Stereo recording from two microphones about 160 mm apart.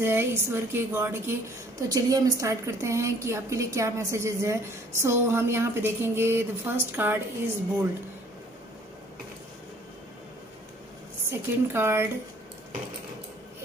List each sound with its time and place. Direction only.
0.0 s a woman's voice: 15° right (ahead or behind)
11.2 s a woman's voice: 15° right (ahead or behind)